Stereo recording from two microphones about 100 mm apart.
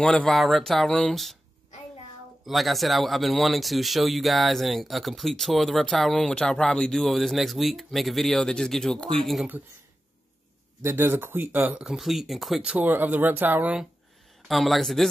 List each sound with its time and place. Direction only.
0.0 s speech: 5° left (ahead or behind)
2.4 s speech: centre (ahead or behind)
10.8 s speech: 20° right (ahead or behind)
11.9 s speech: centre (ahead or behind)
12.7 s speech: 15° right (ahead or behind)
14.5 s speech: centre (ahead or behind)